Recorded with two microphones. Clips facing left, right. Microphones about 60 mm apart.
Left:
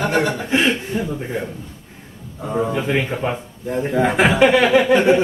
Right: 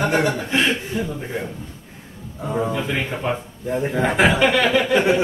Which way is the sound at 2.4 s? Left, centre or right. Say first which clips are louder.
Left 2 dB; centre.